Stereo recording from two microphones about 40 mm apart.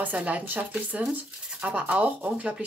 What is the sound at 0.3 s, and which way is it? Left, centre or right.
Speech, right.